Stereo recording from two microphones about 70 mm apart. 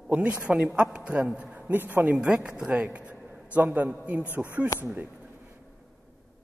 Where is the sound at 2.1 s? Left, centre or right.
Centre; by 5.2 s right.